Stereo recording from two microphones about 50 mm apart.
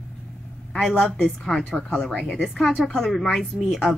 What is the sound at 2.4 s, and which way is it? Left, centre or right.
Speech, centre.